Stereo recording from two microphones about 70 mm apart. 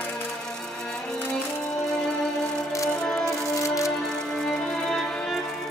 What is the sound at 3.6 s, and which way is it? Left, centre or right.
Music, left.